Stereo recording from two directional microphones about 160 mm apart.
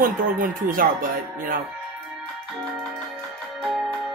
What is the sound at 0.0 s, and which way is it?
Speech, 60° right (ahead or behind).